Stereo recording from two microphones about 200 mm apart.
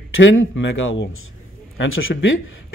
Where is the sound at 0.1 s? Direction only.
75° left (ahead or behind).